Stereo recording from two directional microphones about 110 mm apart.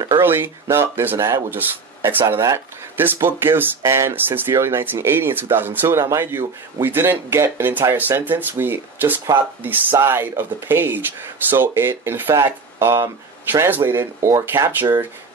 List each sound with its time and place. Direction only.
0.1 s speech: 20° right (ahead or behind)